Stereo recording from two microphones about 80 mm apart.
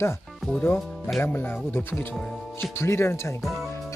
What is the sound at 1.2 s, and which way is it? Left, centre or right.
Speech, left.